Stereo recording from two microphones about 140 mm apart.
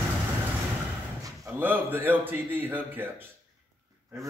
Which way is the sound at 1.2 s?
15° right (ahead or behind).